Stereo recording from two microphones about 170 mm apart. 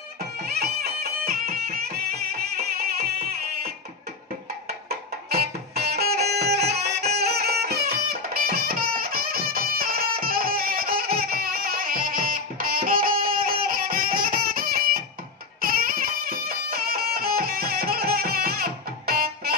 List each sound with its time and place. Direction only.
0.2 s music: 65° right (ahead or behind)
7.2 s music: 70° right (ahead or behind)